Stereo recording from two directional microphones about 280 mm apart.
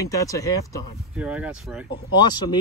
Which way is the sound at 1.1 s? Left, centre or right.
Centre.